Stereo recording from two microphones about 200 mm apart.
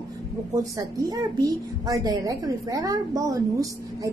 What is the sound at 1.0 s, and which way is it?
A woman's voice, 15° right (ahead or behind).